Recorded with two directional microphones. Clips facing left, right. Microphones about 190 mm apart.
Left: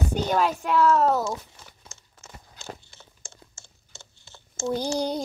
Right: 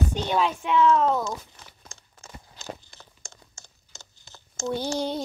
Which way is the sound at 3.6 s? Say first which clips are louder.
Left 1 dB; 40° right (ahead or behind).